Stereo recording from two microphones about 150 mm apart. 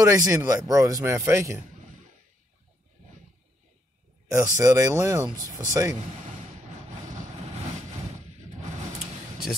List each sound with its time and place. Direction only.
0.0 s speech: 20° right (ahead or behind)
4.3 s speech: 20° right (ahead or behind)